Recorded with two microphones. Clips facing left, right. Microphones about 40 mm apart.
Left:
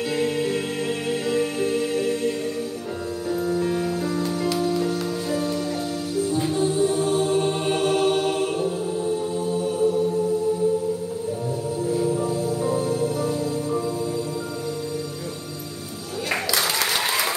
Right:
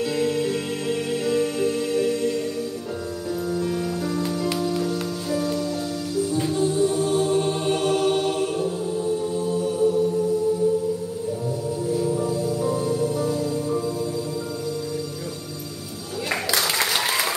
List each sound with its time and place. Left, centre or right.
0.0 s music: centre
4.6 s music: centre
6.6 s music: left
11.9 s music: centre
17.0 s applause: centre